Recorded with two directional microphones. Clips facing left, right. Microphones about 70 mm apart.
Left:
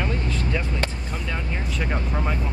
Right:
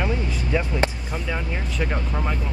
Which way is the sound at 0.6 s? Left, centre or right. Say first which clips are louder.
Right 4 dB; centre.